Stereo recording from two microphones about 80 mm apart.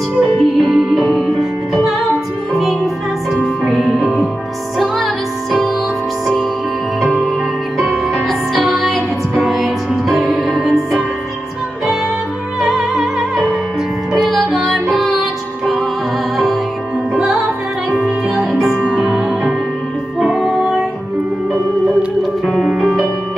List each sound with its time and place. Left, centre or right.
0.4 s music: centre
3.6 s music: centre
7.0 s music: centre
12.6 s music: centre
17.1 s music: centre
22.5 s music: centre